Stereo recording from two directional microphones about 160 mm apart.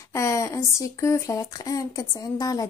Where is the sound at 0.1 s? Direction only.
20° left (ahead or behind).